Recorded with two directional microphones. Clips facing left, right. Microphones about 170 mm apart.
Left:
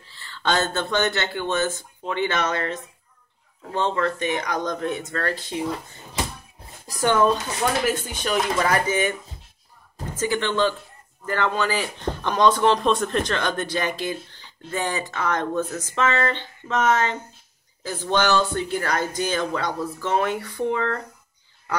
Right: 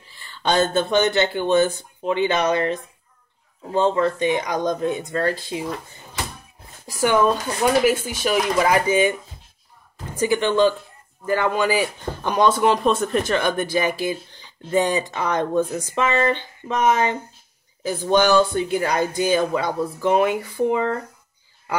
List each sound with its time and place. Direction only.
0.1 s speech: 15° right (ahead or behind)
7.8 s speech: 10° right (ahead or behind)
10.1 s speech: 15° right (ahead or behind)